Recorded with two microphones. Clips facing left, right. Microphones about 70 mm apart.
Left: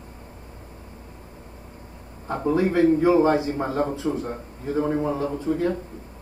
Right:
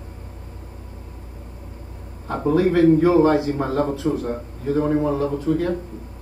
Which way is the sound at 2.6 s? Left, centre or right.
Left.